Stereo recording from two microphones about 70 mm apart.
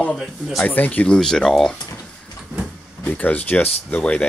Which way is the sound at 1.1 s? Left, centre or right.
Centre.